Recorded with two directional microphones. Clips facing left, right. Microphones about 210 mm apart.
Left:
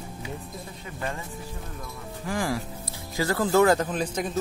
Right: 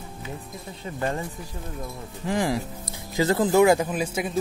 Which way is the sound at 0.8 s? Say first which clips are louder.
Right 7 dB; 35° right (ahead or behind).